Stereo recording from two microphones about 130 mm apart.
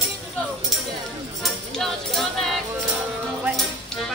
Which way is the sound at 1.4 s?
Centre (ahead or behind).